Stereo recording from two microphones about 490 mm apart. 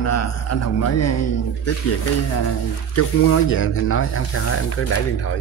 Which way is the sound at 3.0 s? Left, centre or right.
Left.